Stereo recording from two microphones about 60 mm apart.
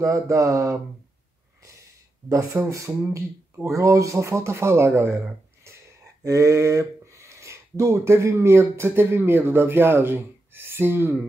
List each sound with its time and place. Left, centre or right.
0.0 s speech: right
2.2 s speech: right
5.7 s a sound: right
6.2 s speech: right